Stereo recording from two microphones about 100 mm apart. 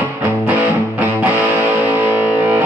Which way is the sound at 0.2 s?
15° right (ahead or behind).